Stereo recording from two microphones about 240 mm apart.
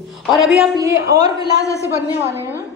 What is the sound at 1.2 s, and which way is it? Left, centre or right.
Speech, centre.